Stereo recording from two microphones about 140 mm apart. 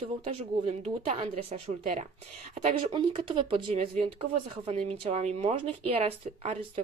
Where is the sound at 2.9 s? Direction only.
35° right (ahead or behind).